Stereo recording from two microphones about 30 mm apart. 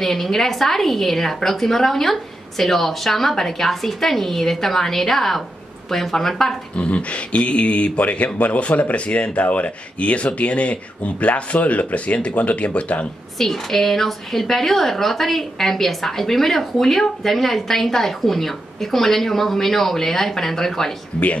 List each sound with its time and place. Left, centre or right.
0.0 s a woman's voice: centre
6.8 s speech: left
13.4 s a woman's voice: centre